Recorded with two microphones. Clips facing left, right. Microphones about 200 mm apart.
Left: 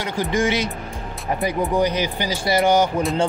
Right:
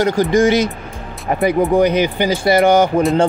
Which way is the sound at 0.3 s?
40° right (ahead or behind).